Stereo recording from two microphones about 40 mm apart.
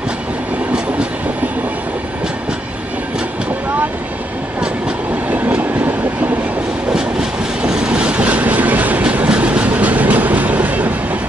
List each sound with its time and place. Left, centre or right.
5.6 s train: right
6.9 s train: centre; by 9.0 s right
9.0 s train: right